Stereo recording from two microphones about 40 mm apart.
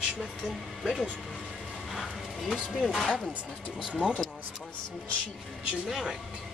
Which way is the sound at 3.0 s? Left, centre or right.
Left.